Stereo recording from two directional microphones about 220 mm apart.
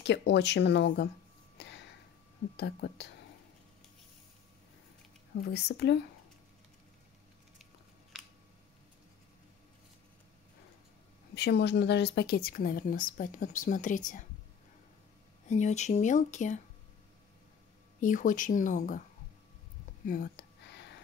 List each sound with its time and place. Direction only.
0.0 s speech: 50° left (ahead or behind)
1.6 s a sound: 50° left (ahead or behind)
2.5 s speech: 50° left (ahead or behind)
5.5 s speech: 50° left (ahead or behind)
11.3 s speech: 50° left (ahead or behind)
15.4 s speech: 35° left (ahead or behind)
18.0 s speech: 35° left (ahead or behind)
20.1 s a sound: 50° left (ahead or behind)